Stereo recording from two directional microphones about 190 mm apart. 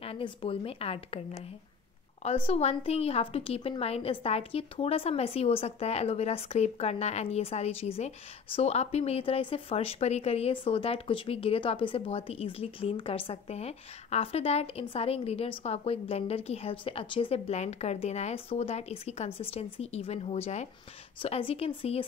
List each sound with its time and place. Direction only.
0.0 s a woman's voice: 30° left (ahead or behind)